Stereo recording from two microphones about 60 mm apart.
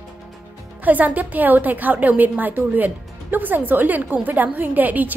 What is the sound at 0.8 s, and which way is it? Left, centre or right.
A woman's voice, right.